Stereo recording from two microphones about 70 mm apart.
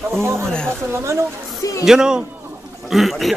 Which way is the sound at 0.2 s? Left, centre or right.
Right.